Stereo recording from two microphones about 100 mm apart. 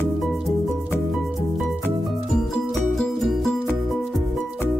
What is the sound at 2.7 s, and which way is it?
Music, centre (ahead or behind).